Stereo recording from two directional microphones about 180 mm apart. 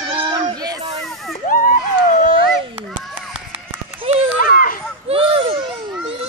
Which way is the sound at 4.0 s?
30° right (ahead or behind).